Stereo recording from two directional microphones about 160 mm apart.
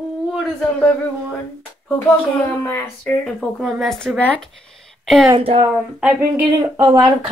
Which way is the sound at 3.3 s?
5° right (ahead or behind).